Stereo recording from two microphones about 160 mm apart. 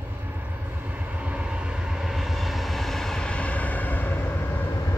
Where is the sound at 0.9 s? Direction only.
10° right (ahead or behind).